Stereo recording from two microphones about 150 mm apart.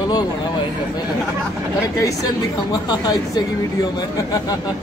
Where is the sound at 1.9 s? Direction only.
25° left (ahead or behind).